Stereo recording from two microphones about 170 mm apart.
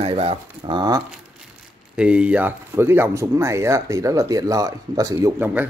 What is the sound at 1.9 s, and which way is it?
Speech, 5° right (ahead or behind).